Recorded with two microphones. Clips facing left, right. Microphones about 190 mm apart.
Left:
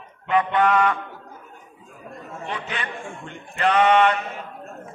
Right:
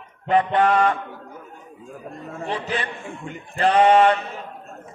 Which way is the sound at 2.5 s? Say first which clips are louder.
Right 4 dB; 35° right (ahead or behind).